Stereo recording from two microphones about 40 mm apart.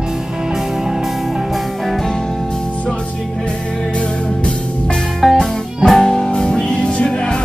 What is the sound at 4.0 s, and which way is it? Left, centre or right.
Music, left.